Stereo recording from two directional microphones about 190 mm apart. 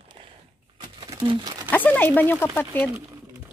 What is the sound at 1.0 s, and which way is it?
Crumpling, 25° right (ahead or behind).